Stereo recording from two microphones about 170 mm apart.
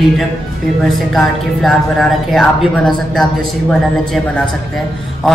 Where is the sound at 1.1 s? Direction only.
Centre (ahead or behind).